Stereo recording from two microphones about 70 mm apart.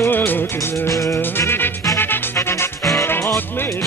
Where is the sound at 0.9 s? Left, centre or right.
Left.